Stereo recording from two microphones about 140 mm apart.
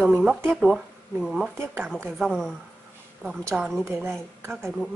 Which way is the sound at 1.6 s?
15° right (ahead or behind).